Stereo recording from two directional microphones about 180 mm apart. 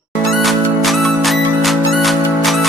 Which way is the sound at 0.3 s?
Centre (ahead or behind).